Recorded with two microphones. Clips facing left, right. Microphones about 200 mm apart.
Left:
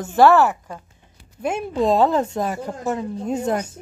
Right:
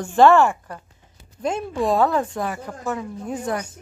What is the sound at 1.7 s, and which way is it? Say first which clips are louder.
A woman's voice: left 3 dB; 20° left (ahead or behind).